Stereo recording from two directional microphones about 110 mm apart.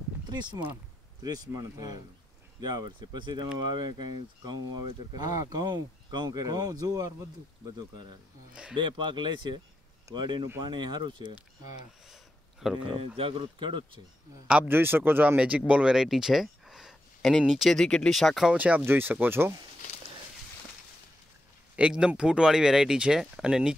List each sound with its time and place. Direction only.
0.3 s speech: 40° right (ahead or behind)
8.7 s speech: 45° right (ahead or behind)
12.1 s a sound: 5° right (ahead or behind)
12.7 s speech: 50° right (ahead or behind)
14.5 s speech: 15° right (ahead or behind); by 18.5 s centre (ahead or behind)
18.5 s speech: 10° right (ahead or behind)
21.7 s speech: 10° right (ahead or behind)